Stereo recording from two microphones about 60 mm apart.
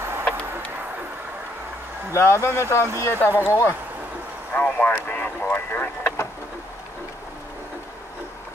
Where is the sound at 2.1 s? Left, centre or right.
Left.